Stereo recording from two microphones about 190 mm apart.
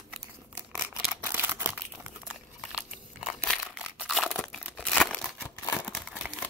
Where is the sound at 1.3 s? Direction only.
10° right (ahead or behind).